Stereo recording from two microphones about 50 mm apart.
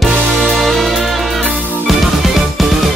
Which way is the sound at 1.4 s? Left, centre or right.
Right.